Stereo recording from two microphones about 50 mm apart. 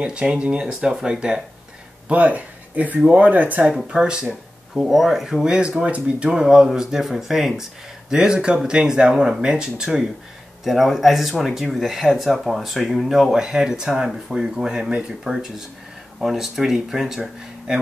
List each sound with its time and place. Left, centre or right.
0.0 s speech: centre
2.0 s speech: right
3.9 s speech: centre
6.3 s speech: centre